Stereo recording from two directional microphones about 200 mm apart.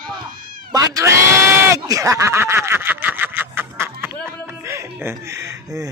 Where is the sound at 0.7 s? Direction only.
15° right (ahead or behind).